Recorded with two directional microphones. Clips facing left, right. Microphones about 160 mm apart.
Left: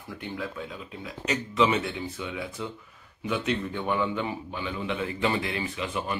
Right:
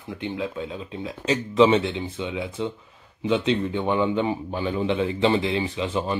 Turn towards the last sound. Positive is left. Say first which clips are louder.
# right 5 dB
turn(degrees=-30)  # may be behind; listen again after turning